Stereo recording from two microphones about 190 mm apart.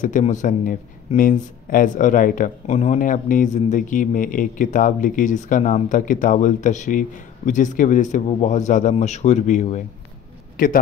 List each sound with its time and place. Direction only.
0.0 s a man's voice: 40° left (ahead or behind)